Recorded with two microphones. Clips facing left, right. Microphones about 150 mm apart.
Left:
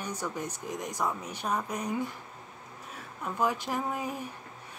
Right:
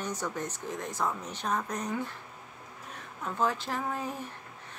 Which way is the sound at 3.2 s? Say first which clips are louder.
Left 1 dB; 15° left (ahead or behind).